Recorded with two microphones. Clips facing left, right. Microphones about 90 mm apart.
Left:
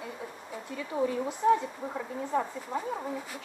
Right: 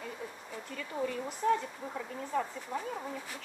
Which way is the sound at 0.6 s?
15° left (ahead or behind).